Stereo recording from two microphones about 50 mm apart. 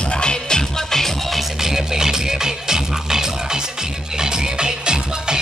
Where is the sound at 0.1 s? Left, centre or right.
Centre.